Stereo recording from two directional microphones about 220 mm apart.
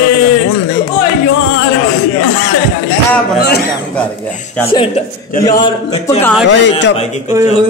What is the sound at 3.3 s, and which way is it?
Speech, 45° left (ahead or behind).